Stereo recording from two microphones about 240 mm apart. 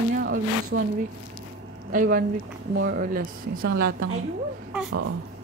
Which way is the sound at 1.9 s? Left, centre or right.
Right.